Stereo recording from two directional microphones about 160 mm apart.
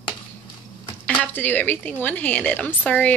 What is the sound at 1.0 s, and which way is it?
A woman's voice, 10° left (ahead or behind).